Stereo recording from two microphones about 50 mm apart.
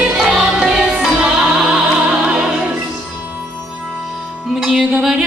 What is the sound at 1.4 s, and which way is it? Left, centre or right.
Opera, centre.